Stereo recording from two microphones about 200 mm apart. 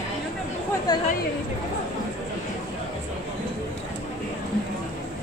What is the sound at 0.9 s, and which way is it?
Speech, 20° left (ahead or behind).